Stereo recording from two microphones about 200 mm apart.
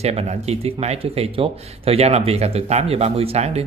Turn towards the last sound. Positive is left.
turn(degrees=-30)  # may be behind; listen again after turning